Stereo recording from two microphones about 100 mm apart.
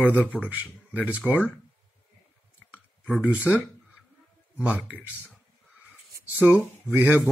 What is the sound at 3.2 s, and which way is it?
Speech, 10° right (ahead or behind).